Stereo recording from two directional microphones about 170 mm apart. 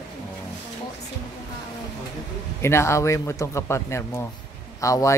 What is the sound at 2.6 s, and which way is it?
Speech, 15° left (ahead or behind).